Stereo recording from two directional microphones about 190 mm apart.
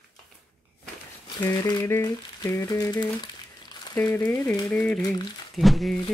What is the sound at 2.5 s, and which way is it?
Crumpling, 15° left (ahead or behind).